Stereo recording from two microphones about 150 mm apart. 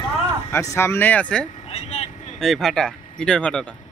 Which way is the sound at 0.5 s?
15° left (ahead or behind).